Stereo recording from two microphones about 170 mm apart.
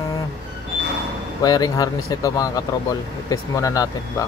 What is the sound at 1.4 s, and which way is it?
Speech, 20° left (ahead or behind).